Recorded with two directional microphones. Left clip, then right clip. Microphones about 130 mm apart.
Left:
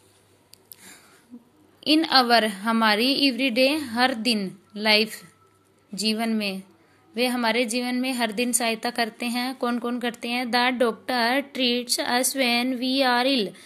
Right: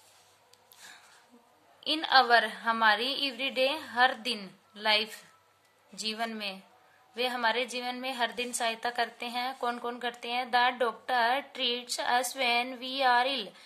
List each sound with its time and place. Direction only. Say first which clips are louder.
1.8 s a woman's voice: left 5 dB; 25° left (ahead or behind)